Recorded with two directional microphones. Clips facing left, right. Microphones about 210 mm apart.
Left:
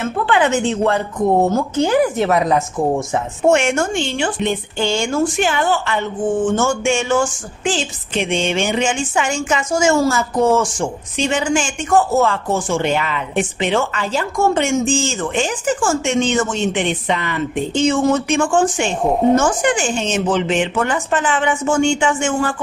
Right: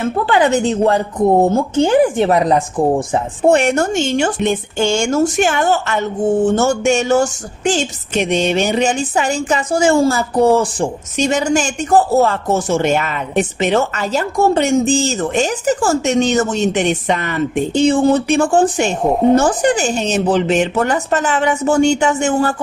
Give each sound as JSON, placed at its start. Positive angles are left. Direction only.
{"t": 0.3, "sound": "a woman's voice", "side_deg": -35}